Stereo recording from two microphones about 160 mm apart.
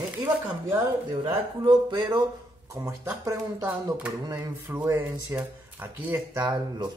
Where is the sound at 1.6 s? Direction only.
30° right (ahead or behind).